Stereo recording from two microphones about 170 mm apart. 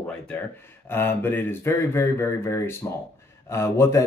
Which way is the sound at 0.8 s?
15° left (ahead or behind).